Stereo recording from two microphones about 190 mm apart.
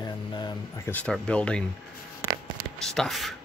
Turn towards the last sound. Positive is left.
turn(degrees=0)  # may be behind; listen again after turning